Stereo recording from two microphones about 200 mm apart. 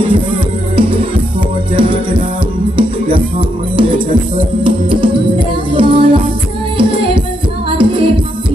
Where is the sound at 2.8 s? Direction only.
25° right (ahead or behind).